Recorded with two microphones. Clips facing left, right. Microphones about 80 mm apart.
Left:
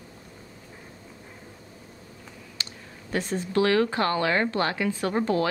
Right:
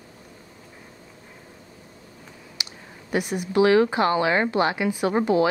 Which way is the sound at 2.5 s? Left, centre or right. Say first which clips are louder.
Right 2 dB; centre.